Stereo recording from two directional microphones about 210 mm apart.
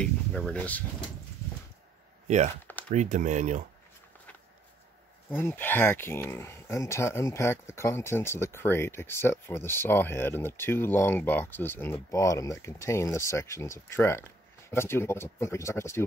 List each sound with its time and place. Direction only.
0.0 s speech: 5° left (ahead or behind)
2.2 s speech: 35° right (ahead or behind)
5.3 s speech: 10° left (ahead or behind)